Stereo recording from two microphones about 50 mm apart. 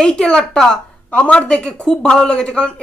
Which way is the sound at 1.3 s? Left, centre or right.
Centre.